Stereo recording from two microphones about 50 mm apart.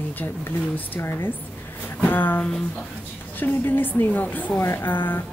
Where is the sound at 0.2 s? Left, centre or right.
Left.